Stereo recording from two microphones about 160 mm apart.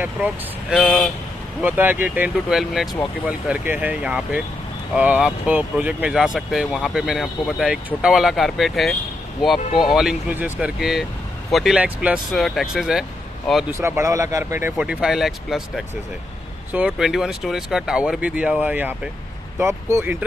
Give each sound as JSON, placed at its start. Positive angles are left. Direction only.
{"t": 0.0, "sound": "speech", "side_deg": -5}
{"t": 1.6, "sound": "speech", "side_deg": -10}
{"t": 13.7, "sound": "speech", "side_deg": -15}